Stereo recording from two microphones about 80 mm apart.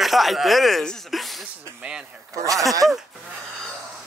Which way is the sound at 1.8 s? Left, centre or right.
Centre.